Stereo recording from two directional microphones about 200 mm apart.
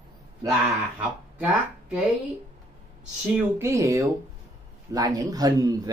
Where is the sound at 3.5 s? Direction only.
15° right (ahead or behind).